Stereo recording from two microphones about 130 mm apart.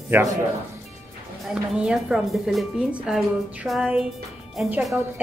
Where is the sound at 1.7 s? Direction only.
5° right (ahead or behind).